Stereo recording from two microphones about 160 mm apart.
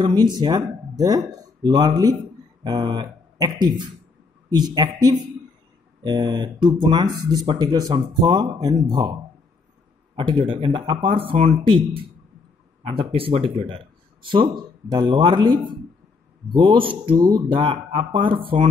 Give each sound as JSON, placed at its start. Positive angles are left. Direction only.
{"t": 0.0, "sound": "speech", "side_deg": -25}
{"t": 10.1, "sound": "speech", "side_deg": -30}